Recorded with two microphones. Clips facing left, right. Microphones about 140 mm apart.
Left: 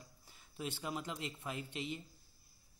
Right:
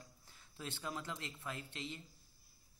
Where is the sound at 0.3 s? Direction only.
15° left (ahead or behind).